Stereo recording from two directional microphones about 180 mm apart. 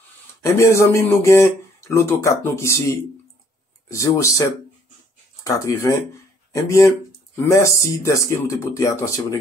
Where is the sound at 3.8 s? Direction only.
15° left (ahead or behind).